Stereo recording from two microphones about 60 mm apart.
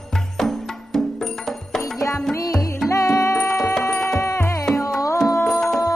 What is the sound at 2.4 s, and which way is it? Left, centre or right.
Music, left.